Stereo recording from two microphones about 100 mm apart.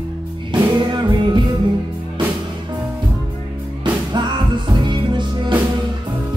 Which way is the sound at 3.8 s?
50° right (ahead or behind).